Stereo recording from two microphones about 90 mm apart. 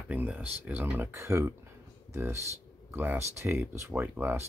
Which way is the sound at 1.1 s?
30° right (ahead or behind).